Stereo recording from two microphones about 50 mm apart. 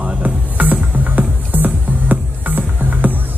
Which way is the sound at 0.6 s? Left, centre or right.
Right.